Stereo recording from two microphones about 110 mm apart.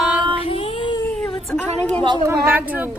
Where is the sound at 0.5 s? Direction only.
55° left (ahead or behind).